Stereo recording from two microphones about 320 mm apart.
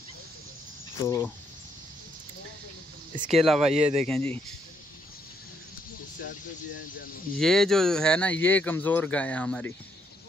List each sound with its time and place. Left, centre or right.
1.0 s speech: centre
3.3 s speech: centre
3.6 s speech: right
3.9 s speech: centre
7.3 s speech: centre